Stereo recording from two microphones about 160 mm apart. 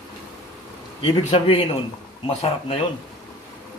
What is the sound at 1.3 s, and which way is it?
Speech, 35° left (ahead or behind).